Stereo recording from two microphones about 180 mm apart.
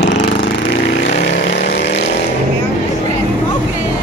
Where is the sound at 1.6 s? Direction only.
40° left (ahead or behind).